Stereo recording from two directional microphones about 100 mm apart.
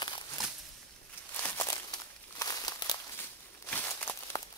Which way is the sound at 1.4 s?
20° left (ahead or behind).